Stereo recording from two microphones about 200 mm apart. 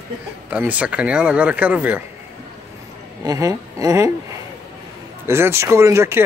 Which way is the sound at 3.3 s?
15° right (ahead or behind).